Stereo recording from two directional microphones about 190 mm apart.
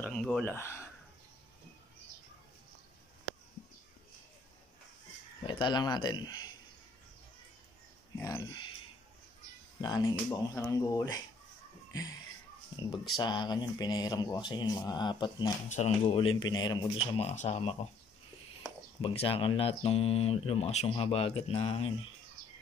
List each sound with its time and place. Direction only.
0.0 s speech: 5° left (ahead or behind)
5.4 s speech: 25° left (ahead or behind)
8.2 s speech: 15° left (ahead or behind)
9.8 s speech: 20° left (ahead or behind)
12.7 s speech: 25° left (ahead or behind)
15.7 s speech: 35° left (ahead or behind)
18.9 s speech: 30° left (ahead or behind)